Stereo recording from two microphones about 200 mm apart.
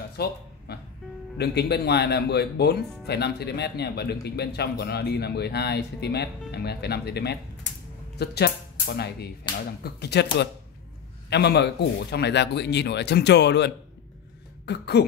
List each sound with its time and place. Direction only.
0.2 s speech: 50° left (ahead or behind)
0.7 s music: 50° left (ahead or behind)
1.4 s speech: 55° left (ahead or behind)
11.2 s speech: 55° left (ahead or behind)
14.7 s speech: 55° left (ahead or behind)